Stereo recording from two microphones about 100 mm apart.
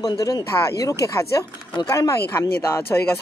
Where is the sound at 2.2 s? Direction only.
20° left (ahead or behind).